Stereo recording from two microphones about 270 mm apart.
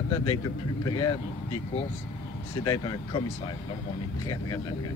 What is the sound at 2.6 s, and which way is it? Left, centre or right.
Speech, centre.